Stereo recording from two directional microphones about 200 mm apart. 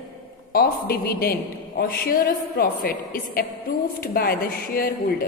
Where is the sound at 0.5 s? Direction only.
50° left (ahead or behind).